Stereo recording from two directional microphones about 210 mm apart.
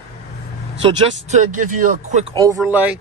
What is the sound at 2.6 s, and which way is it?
Speech, 5° right (ahead or behind).